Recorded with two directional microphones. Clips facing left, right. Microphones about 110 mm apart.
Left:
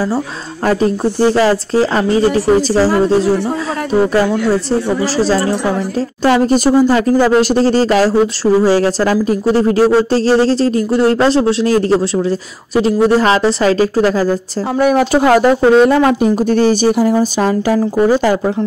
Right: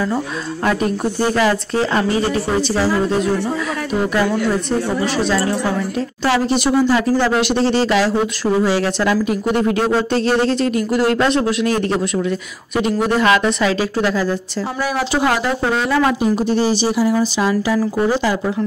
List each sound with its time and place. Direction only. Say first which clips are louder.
0.7 s speech: left 5 dB; 30° left (ahead or behind)
14.8 s speech: left 8 dB; 55° left (ahead or behind)